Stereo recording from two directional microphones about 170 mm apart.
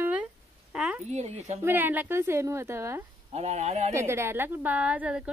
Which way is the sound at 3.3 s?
40° right (ahead or behind).